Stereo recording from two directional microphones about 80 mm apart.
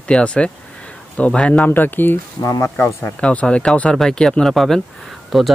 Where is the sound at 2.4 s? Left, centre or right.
Left.